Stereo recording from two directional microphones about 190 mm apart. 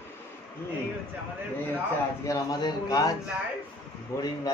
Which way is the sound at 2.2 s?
20° left (ahead or behind).